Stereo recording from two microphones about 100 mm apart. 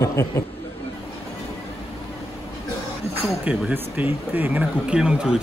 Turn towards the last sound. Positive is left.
turn(degrees=-10)  # may be behind; listen again after turning